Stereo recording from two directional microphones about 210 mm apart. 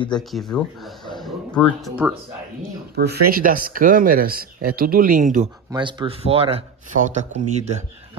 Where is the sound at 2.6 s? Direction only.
45° right (ahead or behind).